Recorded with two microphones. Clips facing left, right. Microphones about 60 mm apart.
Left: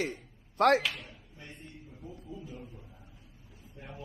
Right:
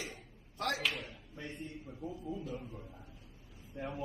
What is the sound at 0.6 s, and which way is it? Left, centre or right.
Speech, left.